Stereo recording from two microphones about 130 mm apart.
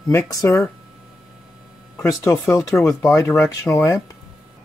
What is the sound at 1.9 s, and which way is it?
Speech, 25° left (ahead or behind).